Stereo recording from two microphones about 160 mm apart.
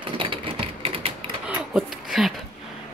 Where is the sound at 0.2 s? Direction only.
35° right (ahead or behind).